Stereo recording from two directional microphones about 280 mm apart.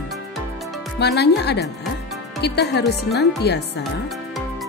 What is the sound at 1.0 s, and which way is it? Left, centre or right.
Speech, left.